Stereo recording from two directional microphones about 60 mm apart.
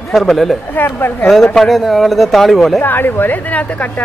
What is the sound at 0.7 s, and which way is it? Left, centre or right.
Speech, left.